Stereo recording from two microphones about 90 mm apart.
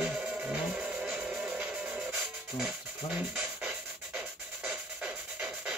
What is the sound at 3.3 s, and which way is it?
Music, 10° right (ahead or behind).